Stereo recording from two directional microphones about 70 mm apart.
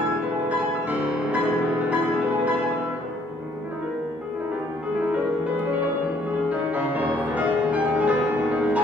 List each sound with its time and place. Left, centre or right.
0.5 s music: right
6.5 s music: centre